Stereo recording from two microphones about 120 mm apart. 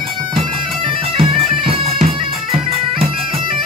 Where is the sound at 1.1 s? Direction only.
55° right (ahead or behind).